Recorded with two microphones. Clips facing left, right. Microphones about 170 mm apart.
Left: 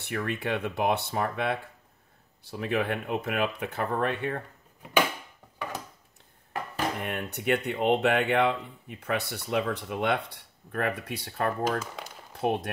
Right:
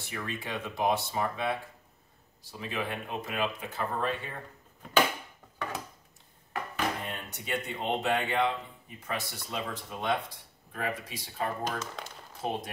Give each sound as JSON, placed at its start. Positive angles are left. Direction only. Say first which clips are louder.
{"t": 0.0, "sound": "speech", "louder": "left 7 dB", "side_deg": 60}
{"t": 7.0, "sound": "speech", "louder": "left 6 dB", "side_deg": 65}
{"t": 11.8, "sound": "speech", "louder": "even", "side_deg": 10}
{"t": 12.4, "sound": "speech", "louder": "left 6 dB", "side_deg": 65}